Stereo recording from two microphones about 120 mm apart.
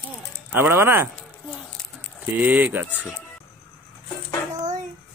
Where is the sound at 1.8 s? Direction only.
5° left (ahead or behind).